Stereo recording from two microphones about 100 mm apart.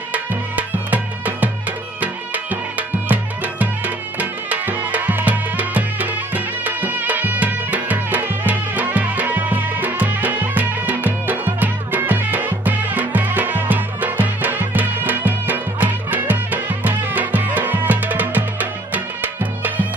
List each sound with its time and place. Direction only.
0.8 s music: 15° right (ahead or behind)